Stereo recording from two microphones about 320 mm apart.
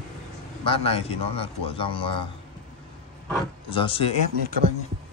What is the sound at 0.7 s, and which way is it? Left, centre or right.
A man's voice, centre.